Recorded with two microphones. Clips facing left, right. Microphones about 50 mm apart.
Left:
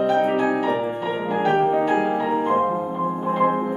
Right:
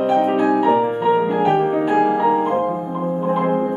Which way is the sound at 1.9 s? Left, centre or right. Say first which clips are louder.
Right 5 dB; centre.